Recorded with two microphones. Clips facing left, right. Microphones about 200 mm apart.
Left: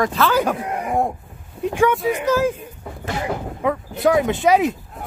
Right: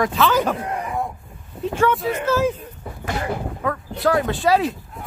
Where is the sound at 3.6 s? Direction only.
20° left (ahead or behind).